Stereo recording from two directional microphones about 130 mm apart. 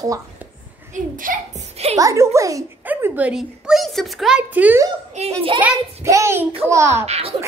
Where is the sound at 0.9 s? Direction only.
90° right.